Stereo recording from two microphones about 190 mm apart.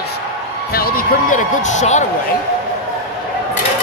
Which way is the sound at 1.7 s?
40° left (ahead or behind).